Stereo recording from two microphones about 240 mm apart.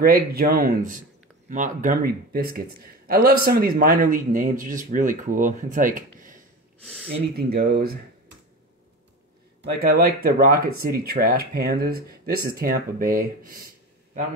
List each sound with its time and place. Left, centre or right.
0.0 s a man's voice: right
6.8 s speech: centre
7.3 s a man's voice: right
9.8 s a man's voice: right